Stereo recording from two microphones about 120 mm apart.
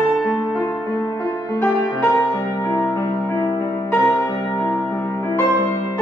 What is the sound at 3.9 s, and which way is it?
Music, 15° left (ahead or behind).